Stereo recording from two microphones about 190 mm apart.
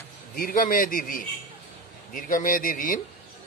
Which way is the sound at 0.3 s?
50° left (ahead or behind).